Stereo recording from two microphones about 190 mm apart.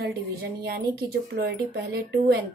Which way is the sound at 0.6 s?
55° right (ahead or behind).